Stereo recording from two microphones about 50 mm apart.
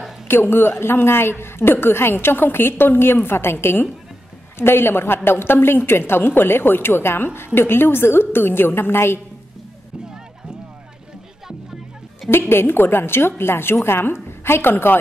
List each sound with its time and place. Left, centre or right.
0.3 s a woman's voice: left
4.6 s a woman's voice: left
12.3 s a woman's voice: left